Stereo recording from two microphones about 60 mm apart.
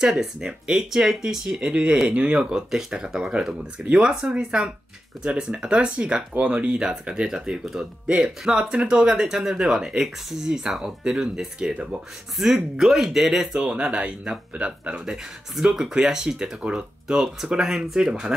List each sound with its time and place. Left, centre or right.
0.0 s speech: centre
12.4 s speech: centre
15.0 s speech: centre